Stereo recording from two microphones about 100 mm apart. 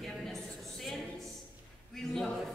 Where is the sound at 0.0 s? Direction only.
Centre (ahead or behind).